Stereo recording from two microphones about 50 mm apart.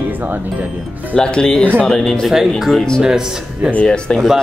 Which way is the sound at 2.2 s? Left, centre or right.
Centre.